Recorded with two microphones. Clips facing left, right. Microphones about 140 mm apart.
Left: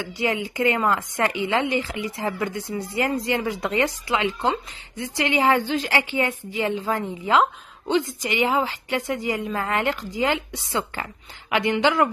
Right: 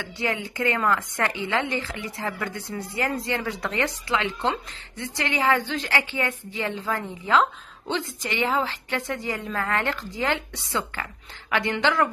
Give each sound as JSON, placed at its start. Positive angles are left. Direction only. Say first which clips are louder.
{"t": 0.2, "sound": "a woman's voice", "louder": "left 4 dB", "side_deg": 15}